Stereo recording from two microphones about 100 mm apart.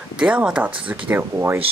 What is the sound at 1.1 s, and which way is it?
Speech, 25° right (ahead or behind).